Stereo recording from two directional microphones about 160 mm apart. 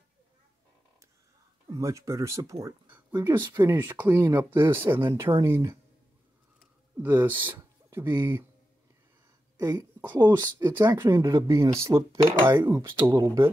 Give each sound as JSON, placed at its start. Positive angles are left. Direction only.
{"t": 1.7, "sound": "speech", "side_deg": -20}
{"t": 7.0, "sound": "speech", "side_deg": -10}
{"t": 9.6, "sound": "speech", "side_deg": -25}
{"t": 10.0, "sound": "speech", "side_deg": -15}